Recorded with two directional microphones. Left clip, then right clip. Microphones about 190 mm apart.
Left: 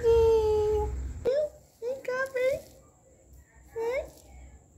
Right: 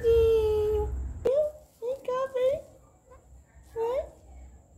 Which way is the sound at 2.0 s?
80° left.